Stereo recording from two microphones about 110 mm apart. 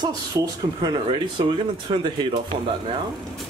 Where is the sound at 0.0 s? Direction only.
40° right (ahead or behind).